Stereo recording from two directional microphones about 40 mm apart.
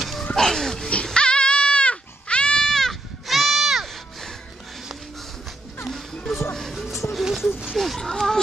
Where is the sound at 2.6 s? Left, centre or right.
Centre.